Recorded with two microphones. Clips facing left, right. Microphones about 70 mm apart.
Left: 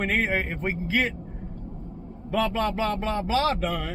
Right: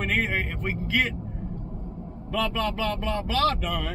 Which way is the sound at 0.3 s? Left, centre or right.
Centre.